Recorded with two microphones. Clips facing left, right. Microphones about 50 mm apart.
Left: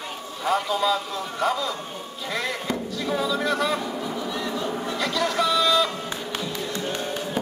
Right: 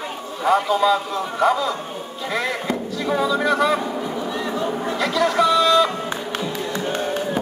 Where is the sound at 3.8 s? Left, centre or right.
Centre.